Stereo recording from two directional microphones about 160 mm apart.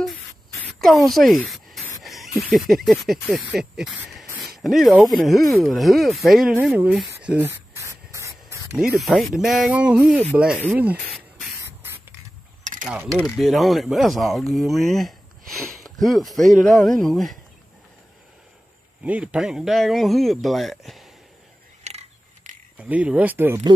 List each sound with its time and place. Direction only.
0.7 s a sound: centre (ahead or behind)
2.0 s speech: centre (ahead or behind)
7.2 s spray: 15° right (ahead or behind)
8.7 s speech: 5° right (ahead or behind)
9.3 s a sound: 5° right (ahead or behind)
10.3 s speech: 5° right (ahead or behind)
10.7 s a sound: 10° right (ahead or behind)
12.8 s mechanisms: 10° right (ahead or behind)
13.4 s speech: centre (ahead or behind)
19.0 s speech: 10° right (ahead or behind)
21.8 s scissors: 45° right (ahead or behind)
22.8 s a sound: 10° right (ahead or behind)